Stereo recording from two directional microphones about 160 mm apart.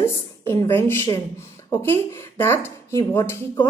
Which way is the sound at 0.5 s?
15° left (ahead or behind).